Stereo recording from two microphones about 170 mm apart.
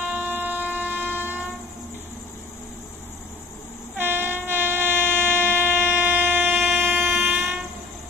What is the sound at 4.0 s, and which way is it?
Train, 10° right (ahead or behind).